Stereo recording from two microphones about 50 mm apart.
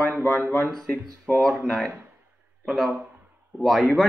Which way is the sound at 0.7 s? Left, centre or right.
Centre.